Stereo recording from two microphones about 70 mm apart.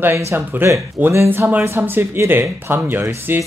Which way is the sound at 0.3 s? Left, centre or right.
Right.